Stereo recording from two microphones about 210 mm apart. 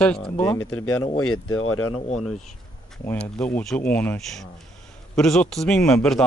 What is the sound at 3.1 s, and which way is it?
Speech, 10° left (ahead or behind).